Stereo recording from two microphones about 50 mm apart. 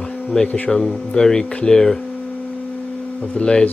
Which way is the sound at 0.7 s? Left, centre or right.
Centre.